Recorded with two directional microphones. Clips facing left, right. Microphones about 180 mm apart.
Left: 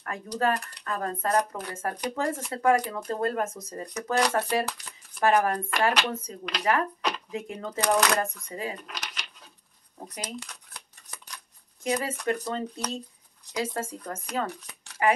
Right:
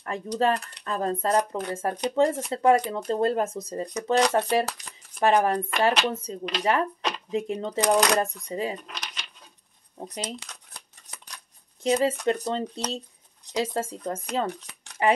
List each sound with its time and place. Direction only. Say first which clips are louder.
0.0 s speech: right 3 dB; 25° right (ahead or behind)
11.8 s speech: right 6 dB; 25° right (ahead or behind)